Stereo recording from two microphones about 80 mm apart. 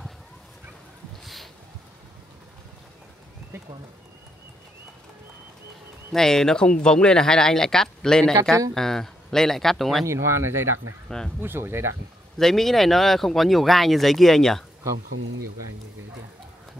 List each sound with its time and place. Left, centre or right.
1.2 s a sound: centre
3.5 s a sound: right
6.1 s speech: centre
10.0 s speech: right
11.1 s speech: centre
11.4 s speech: right
12.4 s speech: centre